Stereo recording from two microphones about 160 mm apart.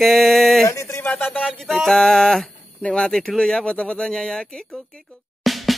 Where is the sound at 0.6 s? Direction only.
20° left (ahead or behind).